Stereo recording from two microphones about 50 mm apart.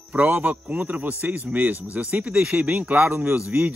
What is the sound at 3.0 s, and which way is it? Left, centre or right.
Speech, right.